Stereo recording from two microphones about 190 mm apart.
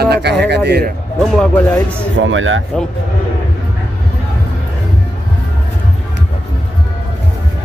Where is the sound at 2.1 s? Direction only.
85° right.